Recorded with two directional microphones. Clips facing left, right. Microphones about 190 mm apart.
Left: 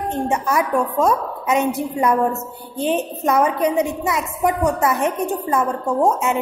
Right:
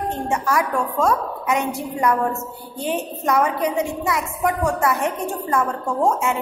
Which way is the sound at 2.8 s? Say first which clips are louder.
Left 4 dB; 25° left (ahead or behind).